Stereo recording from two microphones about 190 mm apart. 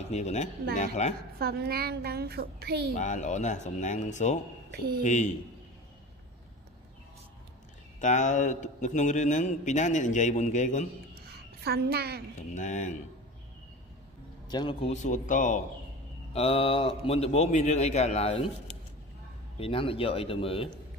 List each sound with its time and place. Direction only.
0.1 s a man's voice: 35° left (ahead or behind)
1.4 s a child's voice: 55° right (ahead or behind)
3.0 s a man's voice: 40° left (ahead or behind)
4.6 s speech: 55° right (ahead or behind)
5.0 s a man's voice: 40° left (ahead or behind)
8.0 s a man's voice: 40° left (ahead or behind)
11.6 s a child's voice: 55° right (ahead or behind)
12.5 s a man's voice: 40° left (ahead or behind)
14.5 s a man's voice: 25° left (ahead or behind); by 15.6 s 40° left (ahead or behind)
16.3 s a man's voice: 30° left (ahead or behind)
19.6 s speech: 30° left (ahead or behind)